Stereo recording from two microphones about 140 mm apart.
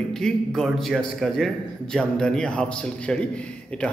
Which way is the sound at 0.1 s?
5° left (ahead or behind).